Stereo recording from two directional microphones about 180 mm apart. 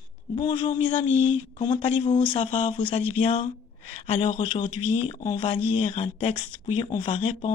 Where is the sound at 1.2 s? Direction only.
25° left (ahead or behind).